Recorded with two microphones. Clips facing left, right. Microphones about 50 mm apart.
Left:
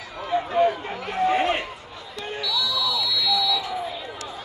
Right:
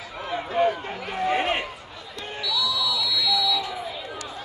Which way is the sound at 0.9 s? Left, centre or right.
Centre.